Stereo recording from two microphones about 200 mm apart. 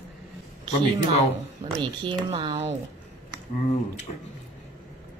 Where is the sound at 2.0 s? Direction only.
25° right (ahead or behind).